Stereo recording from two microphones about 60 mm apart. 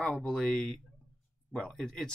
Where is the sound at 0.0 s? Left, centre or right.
Centre.